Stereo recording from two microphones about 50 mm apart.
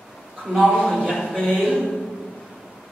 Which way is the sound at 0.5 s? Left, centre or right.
Centre.